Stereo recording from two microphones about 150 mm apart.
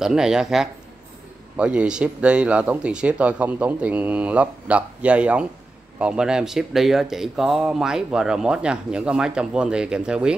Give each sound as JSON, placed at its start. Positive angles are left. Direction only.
{"t": 0.0, "sound": "speech", "side_deg": -5}